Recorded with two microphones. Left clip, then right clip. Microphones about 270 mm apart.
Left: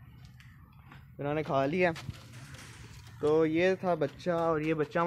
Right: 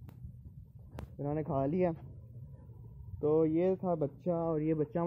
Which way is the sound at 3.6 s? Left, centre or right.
Centre.